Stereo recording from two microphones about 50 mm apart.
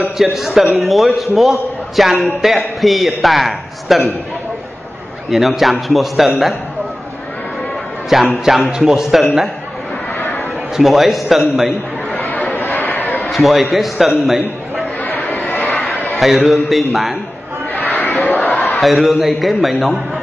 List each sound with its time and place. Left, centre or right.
0.2 s a man's voice: centre
5.3 s a man's voice: centre
8.1 s a man's voice: centre
10.8 s a man's voice: centre
12.2 s chatter: left
13.3 s a man's voice: centre
14.2 s a sound: centre
15.0 s a sound: left
16.6 s a man's voice: centre
17.7 s a sound: left
18.2 s crowd: left
18.8 s a man's voice: centre